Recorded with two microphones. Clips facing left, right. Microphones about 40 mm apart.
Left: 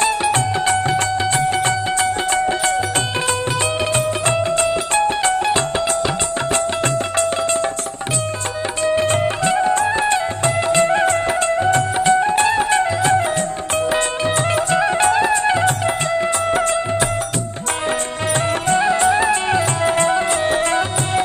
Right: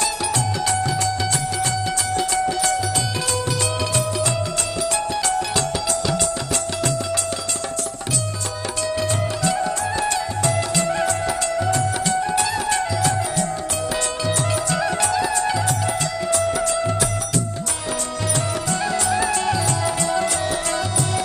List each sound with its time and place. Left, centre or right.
0.0 s music: left
2.3 s music: left
4.9 s music: left
8.8 s music: left
18.3 s music: left